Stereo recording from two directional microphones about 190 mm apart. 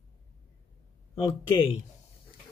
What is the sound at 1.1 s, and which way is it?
Speech, 25° left (ahead or behind).